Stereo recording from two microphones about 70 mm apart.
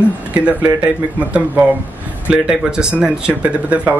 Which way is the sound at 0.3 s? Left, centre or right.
Centre.